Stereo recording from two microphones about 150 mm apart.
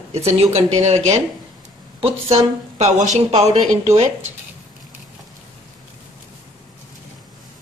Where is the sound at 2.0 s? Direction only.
40° right (ahead or behind).